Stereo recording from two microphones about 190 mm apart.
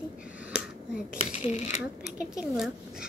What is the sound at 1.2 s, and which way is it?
Speech, 35° left (ahead or behind).